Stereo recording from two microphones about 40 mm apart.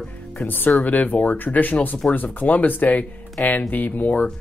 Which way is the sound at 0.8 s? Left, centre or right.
Left.